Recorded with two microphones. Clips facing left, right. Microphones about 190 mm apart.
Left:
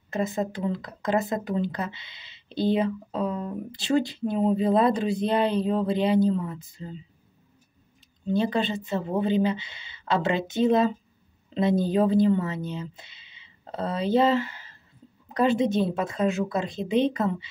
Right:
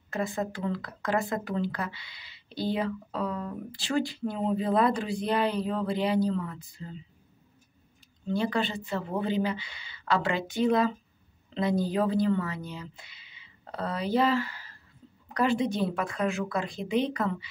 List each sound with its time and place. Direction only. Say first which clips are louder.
0.1 s speech: left 4 dB; 20° left (ahead or behind)
8.3 s speech: left 4 dB; 20° left (ahead or behind)